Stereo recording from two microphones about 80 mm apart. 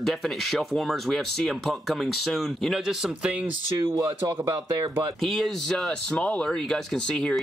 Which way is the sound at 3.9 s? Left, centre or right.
Right.